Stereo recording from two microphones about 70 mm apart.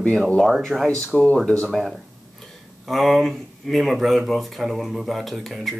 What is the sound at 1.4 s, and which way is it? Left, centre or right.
Speech, centre.